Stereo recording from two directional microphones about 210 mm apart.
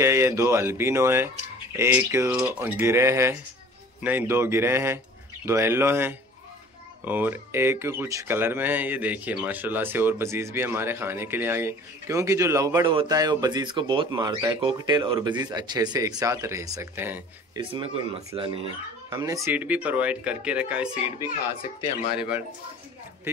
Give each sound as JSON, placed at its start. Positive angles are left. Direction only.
{"t": 0.0, "sound": "speech", "side_deg": -15}
{"t": 17.6, "sound": "speech", "side_deg": -25}